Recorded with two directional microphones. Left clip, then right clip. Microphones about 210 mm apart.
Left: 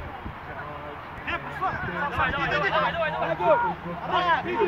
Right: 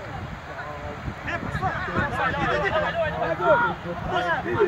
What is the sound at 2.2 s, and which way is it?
Speech, 35° right (ahead or behind).